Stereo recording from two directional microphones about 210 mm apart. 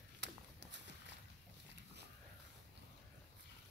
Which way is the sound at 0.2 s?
55° right (ahead or behind).